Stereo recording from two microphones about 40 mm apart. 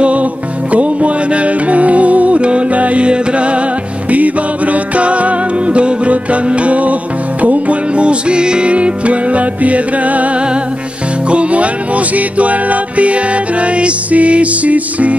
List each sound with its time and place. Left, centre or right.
0.0 s music: right